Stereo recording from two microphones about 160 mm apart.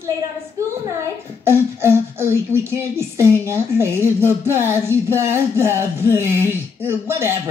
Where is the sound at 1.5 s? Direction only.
15° right (ahead or behind).